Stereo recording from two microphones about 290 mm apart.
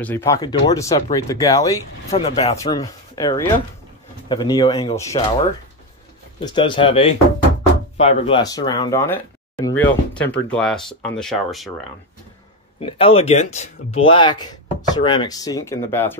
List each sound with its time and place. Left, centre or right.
0.0 s speech: centre
12.8 s speech: centre